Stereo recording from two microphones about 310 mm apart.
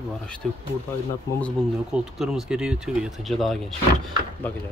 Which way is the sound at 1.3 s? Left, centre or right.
Centre.